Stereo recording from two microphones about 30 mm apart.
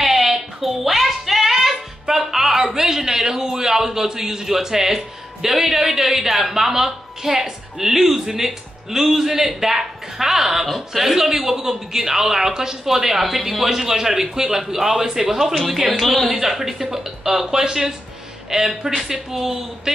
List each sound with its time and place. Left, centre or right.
0.0 s a sound: centre
6.3 s speech: centre
16.3 s speech: centre